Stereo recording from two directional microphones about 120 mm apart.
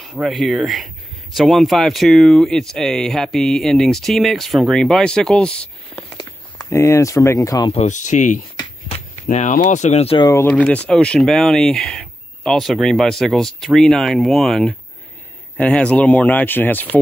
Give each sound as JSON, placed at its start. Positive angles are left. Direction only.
{"t": 0.0, "sound": "speech", "side_deg": 0}
{"t": 6.1, "sound": "speech", "side_deg": 30}
{"t": 7.7, "sound": "speech", "side_deg": 80}
{"t": 8.9, "sound": "speech", "side_deg": 80}
{"t": 10.5, "sound": "speech", "side_deg": 10}